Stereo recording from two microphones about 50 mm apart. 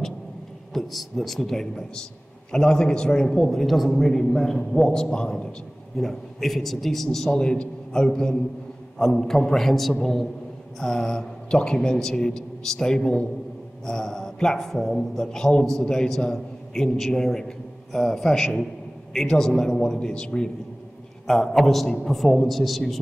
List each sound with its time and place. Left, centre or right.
0.7 s a man's voice: centre
5.9 s a man's voice: centre
21.3 s speech: centre